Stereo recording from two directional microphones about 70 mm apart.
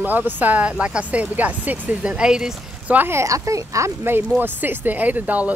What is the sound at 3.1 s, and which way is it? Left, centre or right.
Speech, right.